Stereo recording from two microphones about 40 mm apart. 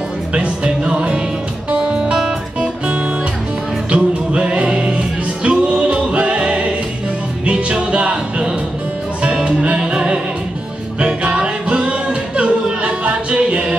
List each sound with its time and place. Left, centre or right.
0.3 s music: right
3.9 s music: right